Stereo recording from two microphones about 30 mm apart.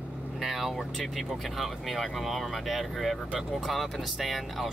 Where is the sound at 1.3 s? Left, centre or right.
Centre.